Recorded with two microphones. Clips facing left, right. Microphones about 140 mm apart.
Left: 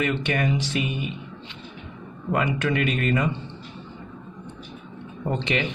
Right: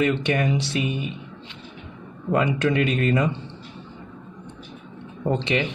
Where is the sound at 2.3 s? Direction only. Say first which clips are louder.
Right 3 dB; 30° right (ahead or behind).